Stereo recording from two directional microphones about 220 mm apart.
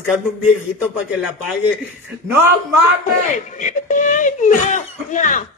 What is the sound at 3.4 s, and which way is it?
Speech, 35° left (ahead or behind).